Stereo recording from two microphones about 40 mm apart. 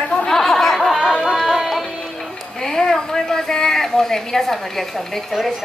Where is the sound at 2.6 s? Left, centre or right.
Centre.